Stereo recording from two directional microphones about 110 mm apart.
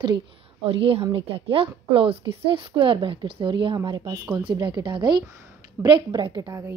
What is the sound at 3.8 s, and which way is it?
A woman's voice, 40° right (ahead or behind).